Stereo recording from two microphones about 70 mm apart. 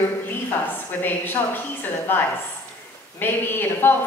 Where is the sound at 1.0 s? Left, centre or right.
Left.